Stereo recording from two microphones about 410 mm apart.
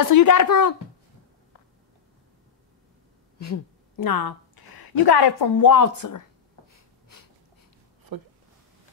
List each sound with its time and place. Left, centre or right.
0.0 s speech: left
3.4 s a sound: left
4.0 s a woman's voice: left
8.1 s speech: right